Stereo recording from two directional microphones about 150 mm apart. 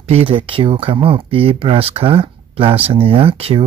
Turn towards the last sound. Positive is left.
turn(degrees=-40)  # may be behind; listen again after turning